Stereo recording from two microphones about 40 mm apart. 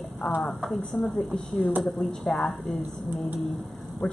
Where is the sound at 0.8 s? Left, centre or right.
Left.